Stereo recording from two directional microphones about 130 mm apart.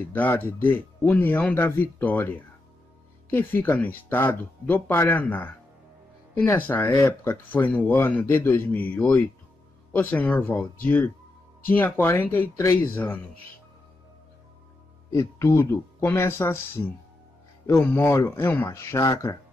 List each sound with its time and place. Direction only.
0.1 s speech: 15° left (ahead or behind)
15.1 s speech: 20° left (ahead or behind)